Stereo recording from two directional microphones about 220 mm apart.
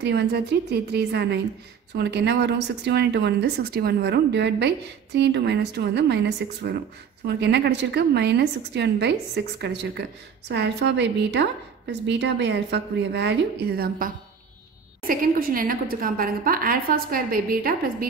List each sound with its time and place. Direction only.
0.0 s a woman's voice: 50° right (ahead or behind)